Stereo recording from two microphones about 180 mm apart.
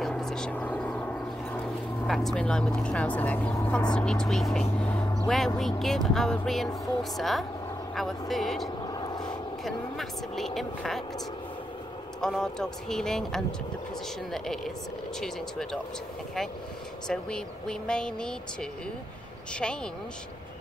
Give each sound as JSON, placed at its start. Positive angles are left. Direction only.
{"t": 0.0, "sound": "a sound", "side_deg": 5}
{"t": 2.0, "sound": "speech", "side_deg": 0}
{"t": 8.8, "sound": "vehicle", "side_deg": 20}
{"t": 9.7, "sound": "speech", "side_deg": 0}
{"t": 12.2, "sound": "speech", "side_deg": 5}
{"t": 17.1, "sound": "speech", "side_deg": 5}